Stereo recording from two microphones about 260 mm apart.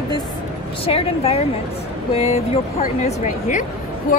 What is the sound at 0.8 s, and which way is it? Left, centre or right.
Speech, left.